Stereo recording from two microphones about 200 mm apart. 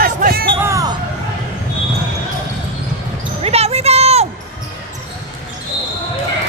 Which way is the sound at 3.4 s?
30° right (ahead or behind).